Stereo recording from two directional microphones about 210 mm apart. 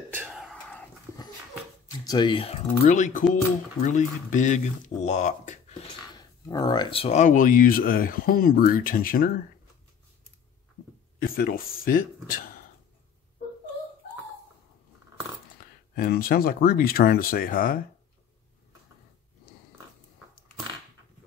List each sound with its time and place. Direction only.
0.1 s whispering: 5° right (ahead or behind)
2.0 s speech: 20° left (ahead or behind)
2.8 s speech: 35° left (ahead or behind)
6.1 s speech: 15° left (ahead or behind); by 9.3 s 45° left (ahead or behind)
11.1 s speech: 45° left (ahead or behind)
15.9 s speech: 45° left (ahead or behind)